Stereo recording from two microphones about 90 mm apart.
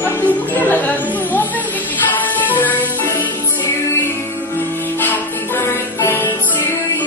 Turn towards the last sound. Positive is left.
turn(degrees=25)  # may be behind; listen again after turning